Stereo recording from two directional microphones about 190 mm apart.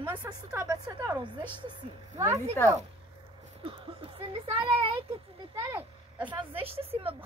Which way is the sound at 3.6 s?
30° right (ahead or behind).